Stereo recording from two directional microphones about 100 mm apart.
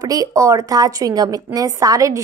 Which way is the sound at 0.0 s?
35° right (ahead or behind).